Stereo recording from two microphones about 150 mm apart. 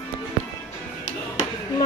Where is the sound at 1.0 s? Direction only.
50° left (ahead or behind).